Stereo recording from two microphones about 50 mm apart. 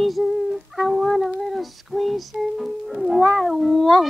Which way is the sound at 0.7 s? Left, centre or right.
Centre.